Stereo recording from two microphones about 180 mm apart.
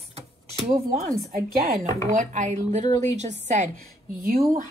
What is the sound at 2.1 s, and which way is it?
Speech, 45° right (ahead or behind).